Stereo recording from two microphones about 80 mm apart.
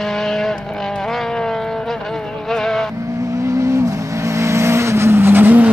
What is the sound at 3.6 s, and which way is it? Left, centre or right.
Vehicle, right.